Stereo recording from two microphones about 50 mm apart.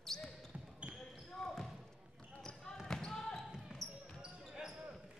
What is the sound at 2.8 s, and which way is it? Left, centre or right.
Basketball bounce, centre.